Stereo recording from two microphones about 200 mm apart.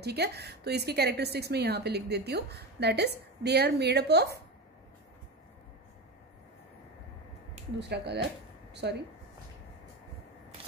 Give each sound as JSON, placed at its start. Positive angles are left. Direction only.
{"t": 0.0, "sound": "a woman's voice", "side_deg": -55}
{"t": 7.9, "sound": "a woman's voice", "side_deg": -55}